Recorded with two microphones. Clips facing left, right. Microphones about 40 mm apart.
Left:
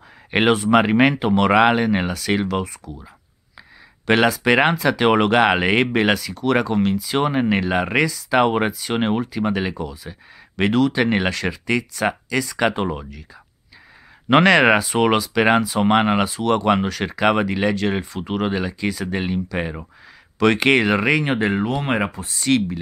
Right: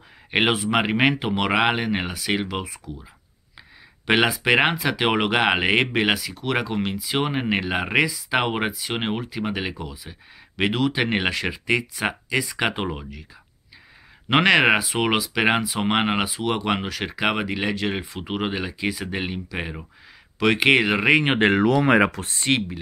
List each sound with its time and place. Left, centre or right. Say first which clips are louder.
0.3 s speech: left 5 dB; centre
4.0 s speech: left 3 dB; centre
14.3 s speech: left 3 dB; centre
21.5 s speech: right 4 dB; right
22.2 s speech: even; right